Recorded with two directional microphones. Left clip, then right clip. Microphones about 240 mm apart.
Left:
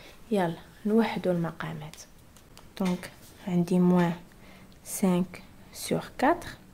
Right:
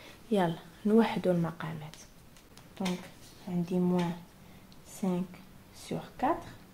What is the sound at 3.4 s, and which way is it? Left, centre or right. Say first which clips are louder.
Speech: left 6 dB; left.